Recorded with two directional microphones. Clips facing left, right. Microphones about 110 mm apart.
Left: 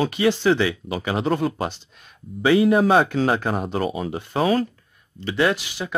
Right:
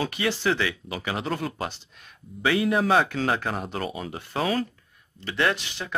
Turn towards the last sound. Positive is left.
turn(degrees=10)  # may be behind; listen again after turning